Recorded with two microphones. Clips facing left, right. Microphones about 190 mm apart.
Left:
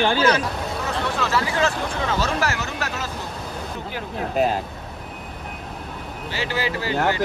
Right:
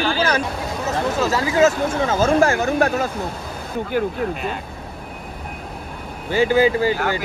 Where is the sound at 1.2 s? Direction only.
40° right (ahead or behind).